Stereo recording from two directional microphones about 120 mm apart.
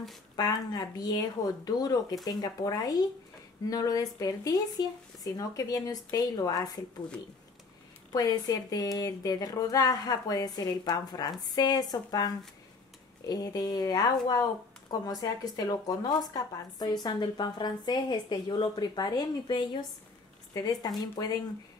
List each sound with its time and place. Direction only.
0.4 s speech: 35° left (ahead or behind)
8.1 s speech: 35° left (ahead or behind)